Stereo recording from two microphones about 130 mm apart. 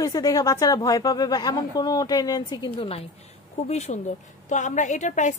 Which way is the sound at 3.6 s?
60° left (ahead or behind).